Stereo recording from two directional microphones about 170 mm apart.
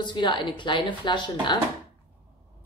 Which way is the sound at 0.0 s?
25° left (ahead or behind).